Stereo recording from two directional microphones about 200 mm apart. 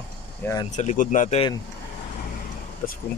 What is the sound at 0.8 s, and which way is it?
Speech, 35° left (ahead or behind).